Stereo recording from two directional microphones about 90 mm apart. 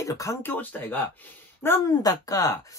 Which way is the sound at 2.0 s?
40° left (ahead or behind).